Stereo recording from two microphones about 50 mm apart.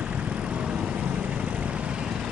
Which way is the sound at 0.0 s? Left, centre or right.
Right.